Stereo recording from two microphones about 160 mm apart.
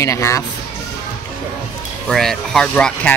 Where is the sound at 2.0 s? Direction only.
Centre (ahead or behind).